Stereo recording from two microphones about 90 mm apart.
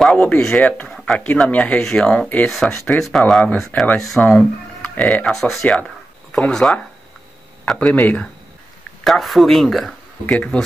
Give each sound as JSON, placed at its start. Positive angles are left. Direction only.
{"t": 0.0, "sound": "speech", "side_deg": 10}
{"t": 0.8, "sound": "speech", "side_deg": 5}
{"t": 1.5, "sound": "speech", "side_deg": 15}
{"t": 2.5, "sound": "speech", "side_deg": 5}
{"t": 5.3, "sound": "speech", "side_deg": 5}
{"t": 9.0, "sound": "speech", "side_deg": 0}